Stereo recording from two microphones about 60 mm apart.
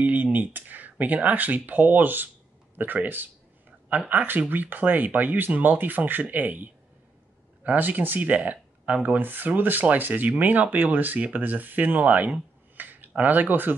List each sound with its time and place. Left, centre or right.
0.0 s speech: right